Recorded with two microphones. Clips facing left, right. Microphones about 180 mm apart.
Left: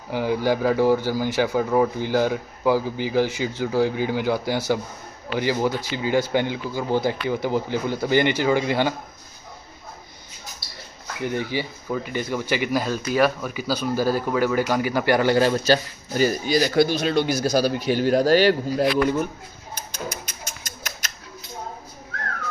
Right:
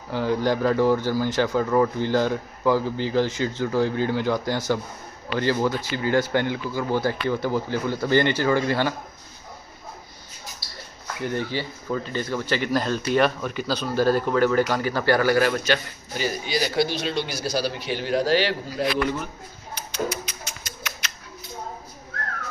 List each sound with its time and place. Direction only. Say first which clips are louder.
0.1 s speech: left 1 dB; 10° left (ahead or behind)
11.2 s speech: left 1 dB; 15° left (ahead or behind); by 19.2 s 45° left (ahead or behind)
19.7 s dog: right 5 dB; 45° left (ahead or behind)